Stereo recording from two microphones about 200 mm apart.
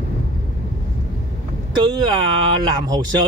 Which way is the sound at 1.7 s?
25° right (ahead or behind).